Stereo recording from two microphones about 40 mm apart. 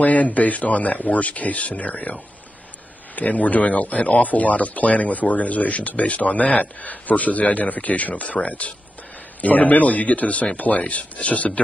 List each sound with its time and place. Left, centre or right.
0.0 s speech: left